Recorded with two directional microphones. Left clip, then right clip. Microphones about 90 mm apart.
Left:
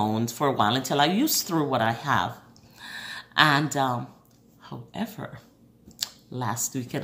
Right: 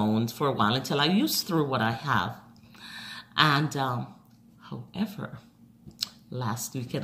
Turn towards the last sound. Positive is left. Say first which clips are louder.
# left 3 dB
turn(degrees=30)  # may be behind; listen again after turning